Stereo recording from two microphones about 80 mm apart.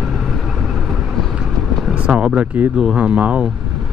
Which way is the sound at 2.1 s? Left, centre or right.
Centre.